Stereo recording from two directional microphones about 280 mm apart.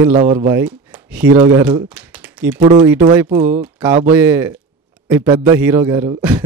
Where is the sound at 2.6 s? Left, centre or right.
Centre.